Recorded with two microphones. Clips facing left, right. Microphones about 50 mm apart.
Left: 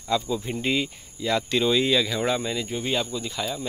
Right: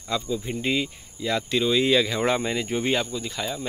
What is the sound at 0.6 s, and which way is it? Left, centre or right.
Speech, centre.